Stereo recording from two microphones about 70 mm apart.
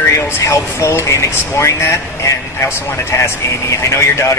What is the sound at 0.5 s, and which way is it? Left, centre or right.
A woman's voice, left.